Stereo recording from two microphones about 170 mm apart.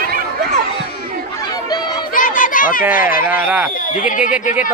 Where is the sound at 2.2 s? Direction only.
50° left (ahead or behind).